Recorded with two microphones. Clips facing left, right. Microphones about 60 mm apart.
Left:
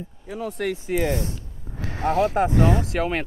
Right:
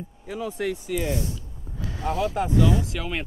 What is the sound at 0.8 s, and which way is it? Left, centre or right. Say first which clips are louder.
Speech: left 3 dB; left.